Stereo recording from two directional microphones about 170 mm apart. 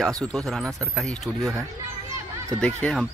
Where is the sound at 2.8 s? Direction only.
5° left (ahead or behind).